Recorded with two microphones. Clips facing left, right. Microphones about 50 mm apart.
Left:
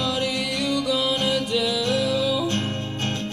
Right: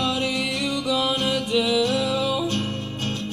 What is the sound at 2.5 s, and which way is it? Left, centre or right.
Music, left.